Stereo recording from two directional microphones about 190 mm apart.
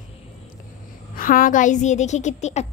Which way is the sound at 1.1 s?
45° left (ahead or behind).